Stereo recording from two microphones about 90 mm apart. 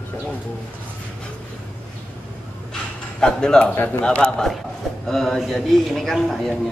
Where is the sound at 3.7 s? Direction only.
20° left (ahead or behind).